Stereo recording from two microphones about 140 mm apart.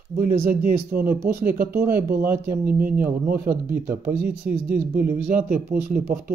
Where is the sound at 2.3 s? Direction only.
20° right (ahead or behind).